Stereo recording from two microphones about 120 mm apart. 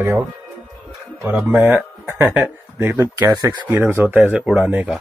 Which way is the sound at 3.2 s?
30° right (ahead or behind).